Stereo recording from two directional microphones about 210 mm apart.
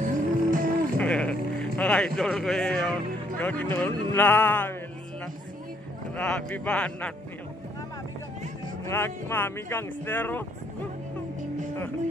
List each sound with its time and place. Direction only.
0.0 s music: 40° right (ahead or behind)
0.9 s sheep: 5° left (ahead or behind)
1.8 s a man's voice: 5° left (ahead or behind)
6.1 s a man's voice: 5° left (ahead or behind)
8.8 s speech: 10° left (ahead or behind)